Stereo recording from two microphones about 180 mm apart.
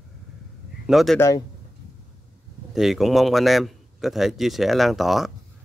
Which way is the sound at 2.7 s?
Centre (ahead or behind).